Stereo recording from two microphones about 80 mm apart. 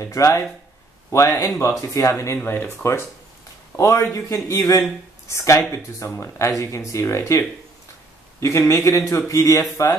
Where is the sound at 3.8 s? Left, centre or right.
Left.